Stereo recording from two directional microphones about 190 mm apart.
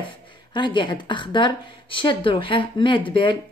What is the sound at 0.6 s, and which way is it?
A woman's voice, 25° left (ahead or behind).